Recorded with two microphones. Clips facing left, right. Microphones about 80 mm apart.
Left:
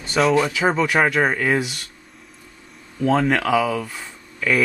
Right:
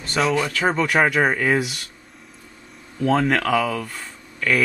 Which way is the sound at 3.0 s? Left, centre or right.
Centre.